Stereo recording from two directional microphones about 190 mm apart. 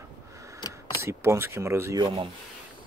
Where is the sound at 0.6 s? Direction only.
20° left (ahead or behind).